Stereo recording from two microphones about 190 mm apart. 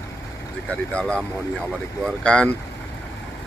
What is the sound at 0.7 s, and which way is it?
Speech, 5° left (ahead or behind).